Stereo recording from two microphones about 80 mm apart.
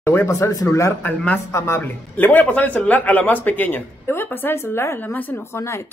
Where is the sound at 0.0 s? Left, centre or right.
Left.